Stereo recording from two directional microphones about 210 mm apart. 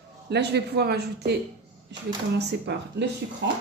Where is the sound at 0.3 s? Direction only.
50° right (ahead or behind).